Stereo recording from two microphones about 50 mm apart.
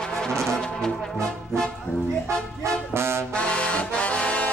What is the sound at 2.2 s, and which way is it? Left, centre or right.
Music, right.